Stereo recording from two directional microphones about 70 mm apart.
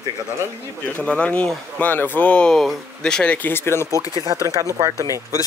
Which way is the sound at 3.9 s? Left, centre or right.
Left.